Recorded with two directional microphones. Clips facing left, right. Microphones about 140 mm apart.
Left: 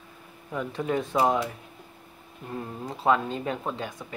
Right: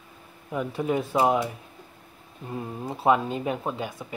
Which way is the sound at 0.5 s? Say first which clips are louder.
Right 2 dB; 10° right (ahead or behind).